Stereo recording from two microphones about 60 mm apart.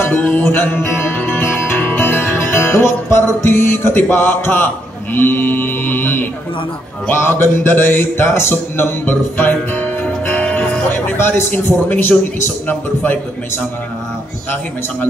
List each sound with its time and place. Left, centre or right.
0.0 s music: left
5.1 s a man's voice: left